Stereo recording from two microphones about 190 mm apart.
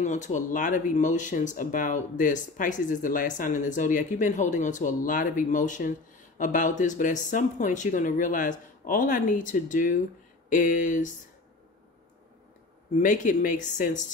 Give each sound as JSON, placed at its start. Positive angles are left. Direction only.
{"t": 0.0, "sound": "speech", "side_deg": 40}
{"t": 12.9, "sound": "speech", "side_deg": 40}